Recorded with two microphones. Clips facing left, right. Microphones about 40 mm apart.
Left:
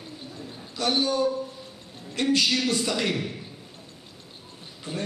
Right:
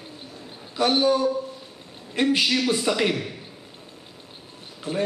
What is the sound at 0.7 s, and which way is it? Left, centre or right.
Speech, centre.